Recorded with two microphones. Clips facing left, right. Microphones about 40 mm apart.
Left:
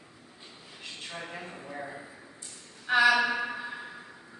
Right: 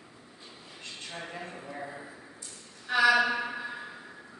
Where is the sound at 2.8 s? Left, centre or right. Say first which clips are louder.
Left 1 dB; left.